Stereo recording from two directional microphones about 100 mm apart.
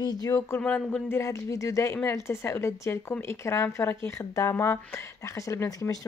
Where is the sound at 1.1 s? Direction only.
30° left (ahead or behind).